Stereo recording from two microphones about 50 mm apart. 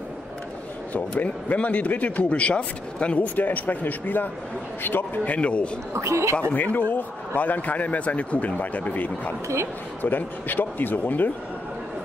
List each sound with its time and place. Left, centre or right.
1.1 s a man's voice: left
5.2 s a man's voice: left
5.9 s speech: right
6.5 s speech: left